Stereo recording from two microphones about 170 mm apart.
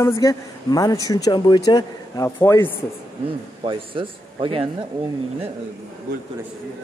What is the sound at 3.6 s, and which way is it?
Speech, 30° right (ahead or behind).